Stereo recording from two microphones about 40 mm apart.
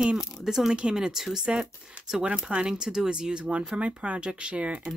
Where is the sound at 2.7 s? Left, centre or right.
Centre.